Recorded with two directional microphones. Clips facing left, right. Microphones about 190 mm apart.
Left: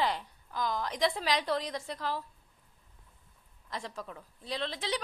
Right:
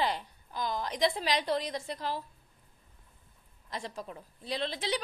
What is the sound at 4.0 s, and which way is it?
Speech, 25° right (ahead or behind).